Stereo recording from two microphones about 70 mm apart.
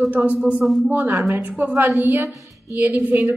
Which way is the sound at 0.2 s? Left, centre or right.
Right.